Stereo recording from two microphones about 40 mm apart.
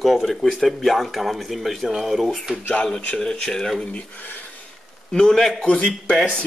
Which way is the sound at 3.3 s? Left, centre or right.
Centre.